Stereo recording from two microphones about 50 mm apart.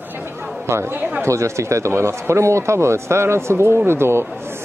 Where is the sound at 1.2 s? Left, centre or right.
Right.